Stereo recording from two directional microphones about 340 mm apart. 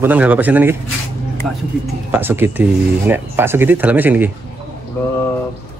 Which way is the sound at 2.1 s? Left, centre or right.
Centre.